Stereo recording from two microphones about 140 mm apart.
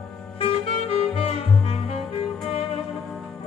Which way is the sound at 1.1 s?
45° left (ahead or behind).